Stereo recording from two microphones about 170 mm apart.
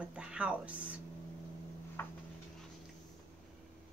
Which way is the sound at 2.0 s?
10° left (ahead or behind).